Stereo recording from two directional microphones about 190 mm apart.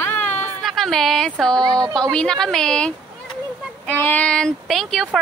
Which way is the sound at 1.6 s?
20° right (ahead or behind).